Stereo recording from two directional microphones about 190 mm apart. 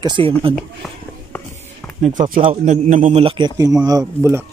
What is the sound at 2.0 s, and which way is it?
Speech, 40° right (ahead or behind).